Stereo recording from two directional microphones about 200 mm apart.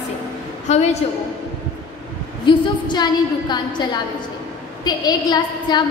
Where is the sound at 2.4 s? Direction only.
20° left (ahead or behind).